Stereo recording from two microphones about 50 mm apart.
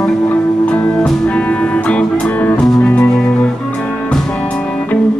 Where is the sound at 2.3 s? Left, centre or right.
Left.